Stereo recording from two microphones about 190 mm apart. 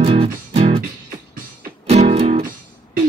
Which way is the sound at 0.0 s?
30° right (ahead or behind).